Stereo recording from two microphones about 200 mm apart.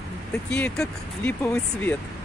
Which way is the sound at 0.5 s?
5° left (ahead or behind).